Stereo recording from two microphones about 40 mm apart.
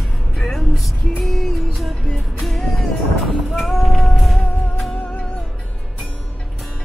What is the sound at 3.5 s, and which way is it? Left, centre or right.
Female singing, centre.